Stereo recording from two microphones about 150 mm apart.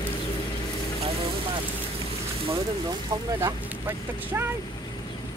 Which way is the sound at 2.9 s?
25° right (ahead or behind).